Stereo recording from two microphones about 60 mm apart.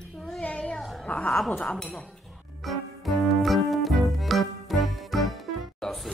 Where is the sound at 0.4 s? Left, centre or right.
Centre.